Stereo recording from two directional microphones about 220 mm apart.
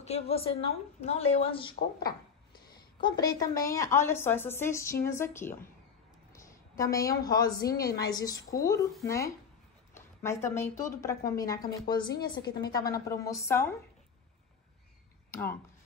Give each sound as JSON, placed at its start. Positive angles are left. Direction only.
{"t": 0.0, "sound": "a woman's voice", "side_deg": 30}
{"t": 12.4, "sound": "a woman's voice", "side_deg": 45}
{"t": 12.7, "sound": "a woman's voice", "side_deg": 15}